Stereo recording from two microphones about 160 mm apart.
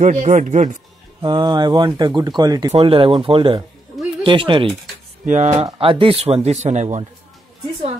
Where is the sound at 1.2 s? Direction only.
30° right (ahead or behind).